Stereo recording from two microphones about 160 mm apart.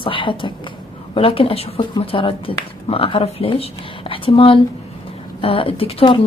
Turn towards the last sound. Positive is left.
turn(degrees=35)  # may be behind; listen again after turning